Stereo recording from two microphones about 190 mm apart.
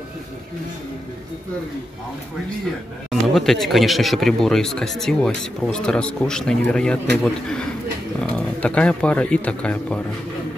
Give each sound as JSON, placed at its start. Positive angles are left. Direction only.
{"t": 3.1, "sound": "speech", "side_deg": 0}
{"t": 8.2, "sound": "speech", "side_deg": 5}